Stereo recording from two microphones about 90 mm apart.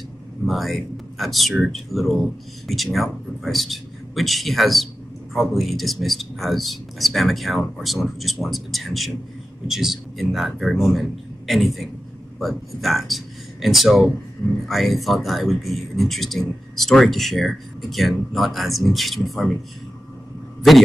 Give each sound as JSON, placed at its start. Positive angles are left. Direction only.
{"t": 0.5, "sound": "speech", "side_deg": 0}
{"t": 20.7, "sound": "speech", "side_deg": 0}